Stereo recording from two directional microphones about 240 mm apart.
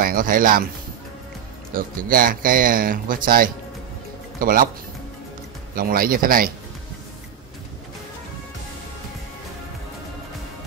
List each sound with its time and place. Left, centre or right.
0.0 s speech: right
1.7 s speech: right
5.8 s speech: right